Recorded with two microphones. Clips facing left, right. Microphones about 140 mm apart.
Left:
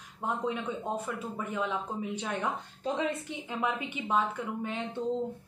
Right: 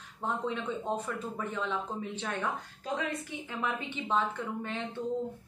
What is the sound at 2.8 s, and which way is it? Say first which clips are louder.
A woman's voice: left 4 dB; 25° left (ahead or behind).